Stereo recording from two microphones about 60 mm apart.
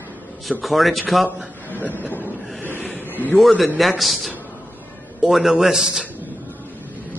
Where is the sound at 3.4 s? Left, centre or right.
Centre.